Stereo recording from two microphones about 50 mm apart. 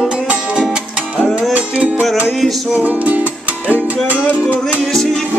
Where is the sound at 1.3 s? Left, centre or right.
Right.